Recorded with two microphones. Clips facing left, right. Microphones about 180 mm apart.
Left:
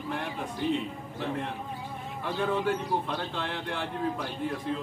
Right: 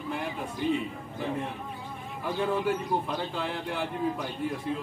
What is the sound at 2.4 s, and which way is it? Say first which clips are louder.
Speech: even; 5° right (ahead or behind).